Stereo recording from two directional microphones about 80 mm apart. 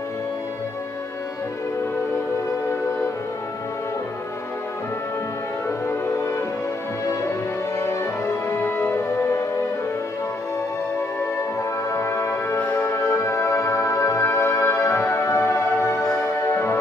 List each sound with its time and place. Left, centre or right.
5.7 s music: left
7.8 s music: left
11.9 s music: left